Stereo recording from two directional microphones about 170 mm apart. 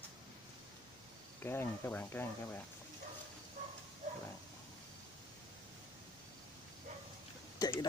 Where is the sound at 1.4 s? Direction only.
15° left (ahead or behind).